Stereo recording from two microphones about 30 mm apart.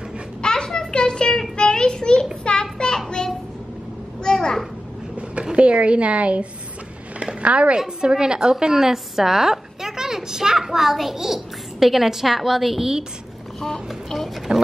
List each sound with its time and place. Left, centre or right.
0.4 s a sound: left
1.6 s child singing: left
4.2 s a sound: left
5.6 s a woman's voice: right
7.4 s a woman's voice: right
8.0 s a woman's voice: right
8.9 s a child's voice: centre
14.5 s speech: right